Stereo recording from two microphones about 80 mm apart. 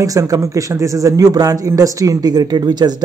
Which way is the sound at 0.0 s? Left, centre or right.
Right.